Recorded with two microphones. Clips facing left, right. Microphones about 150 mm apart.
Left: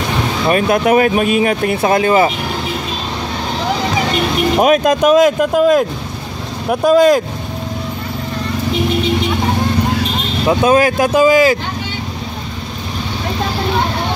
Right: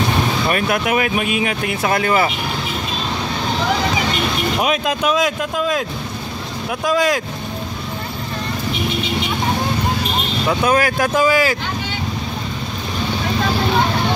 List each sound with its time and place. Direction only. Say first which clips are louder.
0.5 s speech: left 10 dB; 30° left (ahead or behind)
1.9 s speech: left 5 dB; 25° left (ahead or behind)
4.6 s speech: left 10 dB; 45° left (ahead or behind)
6.7 s speech: left 8 dB; 40° left (ahead or behind)
10.4 s speech: left 6 dB; 25° left (ahead or behind)